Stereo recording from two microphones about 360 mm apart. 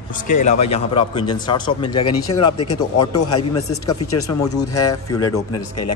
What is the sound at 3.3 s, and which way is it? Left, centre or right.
Speech, left.